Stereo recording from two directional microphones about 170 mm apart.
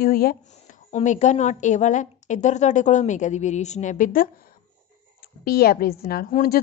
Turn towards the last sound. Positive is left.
turn(degrees=60)  # may be behind; listen again after turning